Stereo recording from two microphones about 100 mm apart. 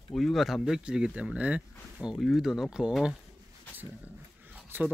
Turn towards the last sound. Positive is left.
turn(degrees=-20)  # may be behind; listen again after turning